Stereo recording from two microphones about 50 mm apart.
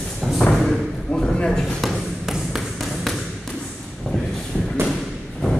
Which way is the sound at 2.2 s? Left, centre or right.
Centre.